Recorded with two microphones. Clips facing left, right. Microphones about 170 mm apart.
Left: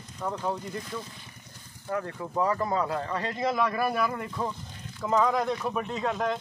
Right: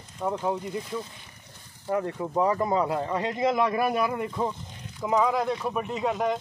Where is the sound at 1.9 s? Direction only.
20° right (ahead or behind).